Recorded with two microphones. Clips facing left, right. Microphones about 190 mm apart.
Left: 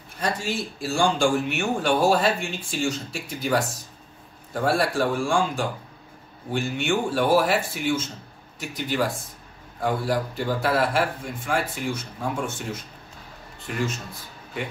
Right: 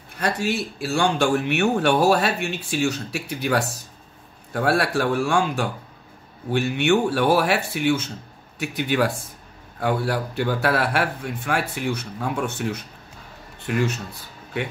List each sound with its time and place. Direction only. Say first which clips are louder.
0.2 s a man's voice: right 3 dB; 65° right (ahead or behind)